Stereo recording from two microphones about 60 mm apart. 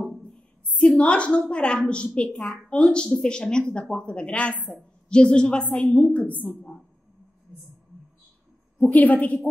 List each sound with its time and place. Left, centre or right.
0.8 s a woman's voice: centre
8.7 s a woman's voice: left